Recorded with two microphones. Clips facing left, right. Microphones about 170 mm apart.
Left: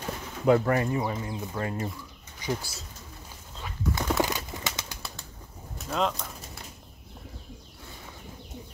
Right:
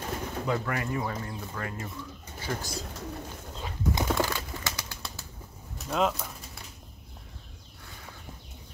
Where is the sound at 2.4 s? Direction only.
10° left (ahead or behind).